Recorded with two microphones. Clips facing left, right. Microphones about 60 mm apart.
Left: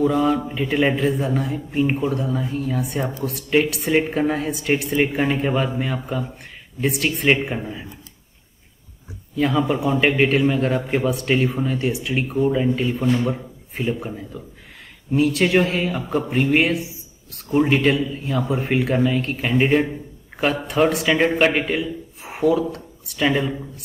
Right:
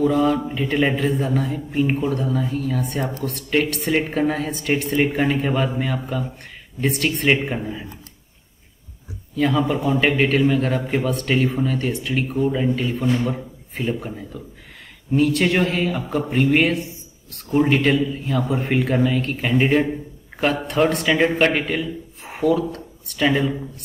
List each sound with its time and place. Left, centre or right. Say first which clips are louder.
0.0 s a man's voice: even; centre
9.4 s a man's voice: even; centre